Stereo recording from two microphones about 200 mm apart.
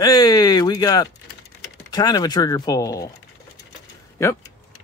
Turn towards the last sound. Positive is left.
turn(degrees=15)  # may be behind; listen again after turning